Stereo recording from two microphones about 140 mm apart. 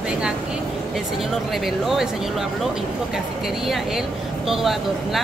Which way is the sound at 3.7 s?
Centre (ahead or behind).